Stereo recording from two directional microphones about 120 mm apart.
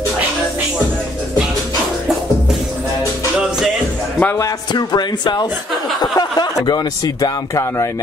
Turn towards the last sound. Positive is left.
turn(degrees=25)  # may be behind; listen again after turning